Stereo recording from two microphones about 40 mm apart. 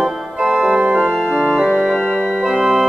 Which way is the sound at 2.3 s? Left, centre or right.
Centre.